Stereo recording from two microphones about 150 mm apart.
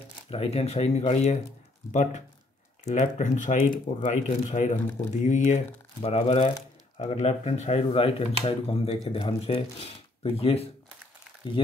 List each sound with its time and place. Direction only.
0.3 s speech: 45° left (ahead or behind)
11.4 s speech: 30° left (ahead or behind)